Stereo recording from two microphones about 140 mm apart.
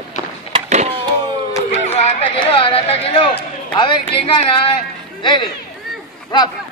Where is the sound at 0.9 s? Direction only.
35° right (ahead or behind).